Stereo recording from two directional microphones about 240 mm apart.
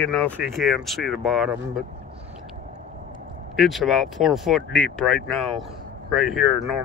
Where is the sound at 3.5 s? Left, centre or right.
Centre.